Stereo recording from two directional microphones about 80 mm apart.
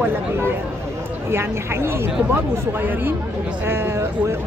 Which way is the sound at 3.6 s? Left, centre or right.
Right.